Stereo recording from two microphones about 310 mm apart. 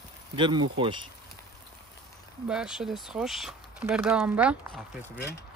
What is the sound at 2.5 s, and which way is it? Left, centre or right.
Speech, centre.